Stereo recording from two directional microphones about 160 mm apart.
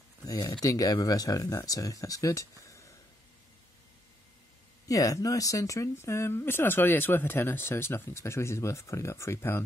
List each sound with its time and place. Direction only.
0.2 s speech: 25° left (ahead or behind)
4.8 s speech: 20° left (ahead or behind)